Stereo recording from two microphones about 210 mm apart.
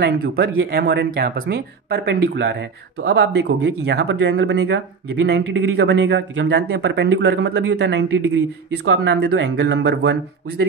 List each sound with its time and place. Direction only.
0.0 s speech: 50° right (ahead or behind)